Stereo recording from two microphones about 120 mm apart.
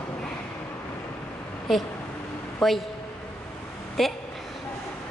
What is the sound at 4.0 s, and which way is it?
Speech, centre (ahead or behind).